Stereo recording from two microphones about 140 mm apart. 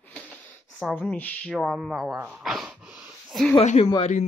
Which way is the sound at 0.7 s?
Centre (ahead or behind).